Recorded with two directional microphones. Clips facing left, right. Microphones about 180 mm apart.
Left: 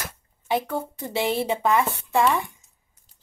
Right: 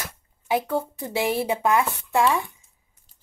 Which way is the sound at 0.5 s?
10° right (ahead or behind).